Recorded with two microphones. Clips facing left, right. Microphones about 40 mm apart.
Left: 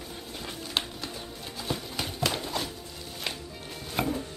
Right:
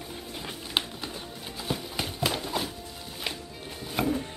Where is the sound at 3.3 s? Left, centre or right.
Centre.